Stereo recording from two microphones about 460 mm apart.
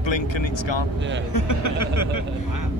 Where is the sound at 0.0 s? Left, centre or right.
Left.